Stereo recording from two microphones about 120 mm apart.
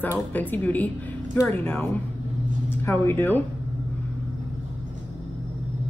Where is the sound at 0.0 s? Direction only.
15° left (ahead or behind).